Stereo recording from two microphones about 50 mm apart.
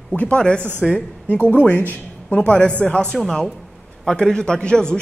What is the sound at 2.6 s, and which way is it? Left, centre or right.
Speech, left.